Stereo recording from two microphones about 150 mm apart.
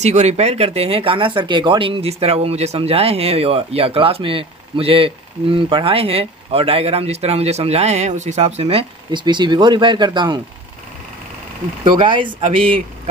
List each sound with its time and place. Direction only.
0.0 s speech: 50° right (ahead or behind); by 10.4 s 30° right (ahead or behind)
11.8 s speech: 35° right (ahead or behind)